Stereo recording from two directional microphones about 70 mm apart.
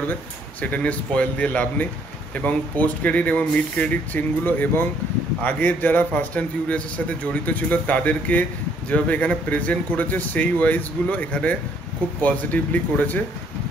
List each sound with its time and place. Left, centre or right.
0.1 s a man's voice: left